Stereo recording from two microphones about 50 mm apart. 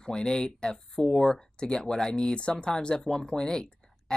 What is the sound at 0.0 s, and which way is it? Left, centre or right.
Speech, centre.